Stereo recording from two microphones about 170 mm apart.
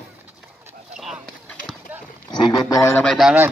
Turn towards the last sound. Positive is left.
turn(degrees=0)  # may be behind; listen again after turning